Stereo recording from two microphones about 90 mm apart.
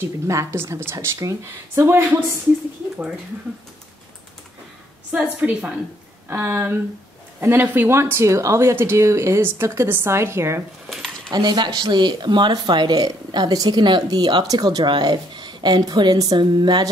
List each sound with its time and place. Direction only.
0.3 s speech: 35° right (ahead or behind)
5.4 s a woman's voice: 15° right (ahead or behind)
6.2 s speech: 25° right (ahead or behind)
11.3 s speech: 55° right (ahead or behind)